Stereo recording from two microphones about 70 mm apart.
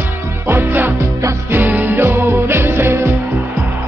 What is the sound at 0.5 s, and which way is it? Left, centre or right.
Music, right.